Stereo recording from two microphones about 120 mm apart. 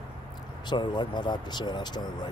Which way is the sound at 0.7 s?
40° left (ahead or behind).